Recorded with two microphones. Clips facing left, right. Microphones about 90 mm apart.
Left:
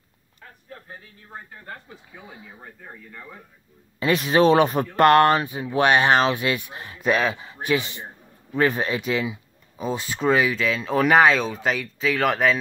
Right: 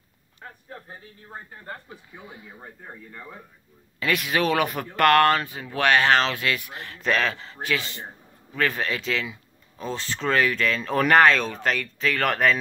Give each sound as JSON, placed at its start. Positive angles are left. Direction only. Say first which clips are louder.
{"t": 2.2, "sound": "speech", "louder": "even", "side_deg": 25}
{"t": 4.0, "sound": "speech", "louder": "left 6 dB", "side_deg": 25}